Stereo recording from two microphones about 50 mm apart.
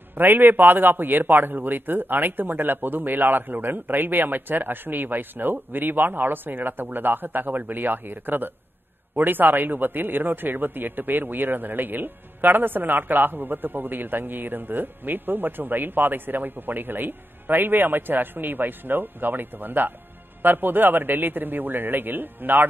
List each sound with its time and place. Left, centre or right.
0.1 s a man's voice: right